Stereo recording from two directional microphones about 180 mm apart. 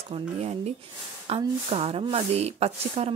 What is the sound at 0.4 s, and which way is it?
Speech, 35° right (ahead or behind).